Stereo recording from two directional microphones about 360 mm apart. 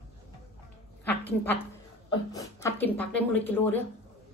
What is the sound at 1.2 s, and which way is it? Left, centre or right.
A woman's voice, centre.